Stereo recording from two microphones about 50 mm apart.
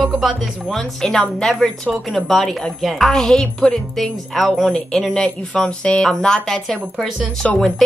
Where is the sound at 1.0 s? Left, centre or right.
Centre.